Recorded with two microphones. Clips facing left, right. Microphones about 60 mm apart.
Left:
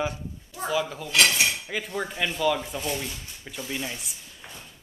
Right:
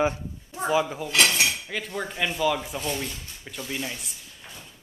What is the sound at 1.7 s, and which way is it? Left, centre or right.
Speech, centre.